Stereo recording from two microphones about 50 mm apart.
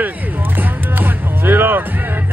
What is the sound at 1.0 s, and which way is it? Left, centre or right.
Music, right.